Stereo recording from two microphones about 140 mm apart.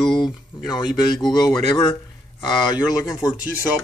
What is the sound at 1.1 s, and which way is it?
Speech, 30° left (ahead or behind).